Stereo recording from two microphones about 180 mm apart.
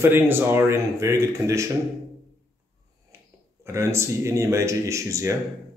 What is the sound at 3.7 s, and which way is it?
Speech, 15° right (ahead or behind).